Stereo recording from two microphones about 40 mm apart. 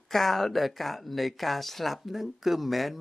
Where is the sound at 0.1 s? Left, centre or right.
Centre.